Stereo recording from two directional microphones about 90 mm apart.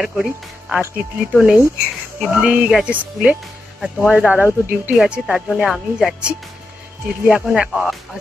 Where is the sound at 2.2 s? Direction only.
15° right (ahead or behind).